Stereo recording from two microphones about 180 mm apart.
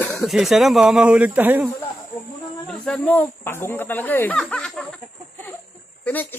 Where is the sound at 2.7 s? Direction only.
5° left (ahead or behind).